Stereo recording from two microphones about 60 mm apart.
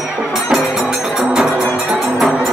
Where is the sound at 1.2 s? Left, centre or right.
Centre.